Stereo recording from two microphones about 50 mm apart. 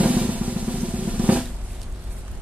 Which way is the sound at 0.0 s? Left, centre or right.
Right.